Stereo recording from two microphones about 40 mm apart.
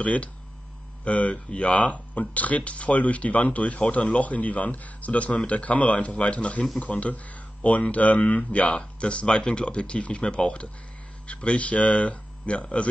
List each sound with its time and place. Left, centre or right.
0.0 s speech: left